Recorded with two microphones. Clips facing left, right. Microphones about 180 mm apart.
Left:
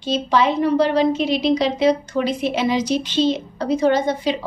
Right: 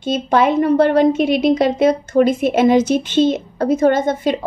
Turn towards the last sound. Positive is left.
turn(degrees=-50)  # may be behind; listen again after turning